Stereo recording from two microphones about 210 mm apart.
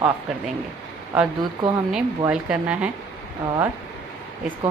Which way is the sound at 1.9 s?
5° right (ahead or behind).